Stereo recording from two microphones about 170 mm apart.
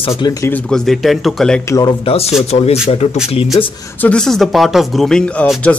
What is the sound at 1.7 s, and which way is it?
Speech, 20° left (ahead or behind).